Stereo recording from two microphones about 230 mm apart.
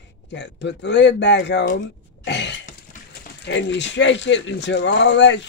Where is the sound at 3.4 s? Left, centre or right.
Left.